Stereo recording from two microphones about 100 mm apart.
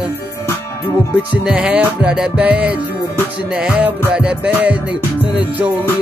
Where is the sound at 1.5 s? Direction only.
10° right (ahead or behind).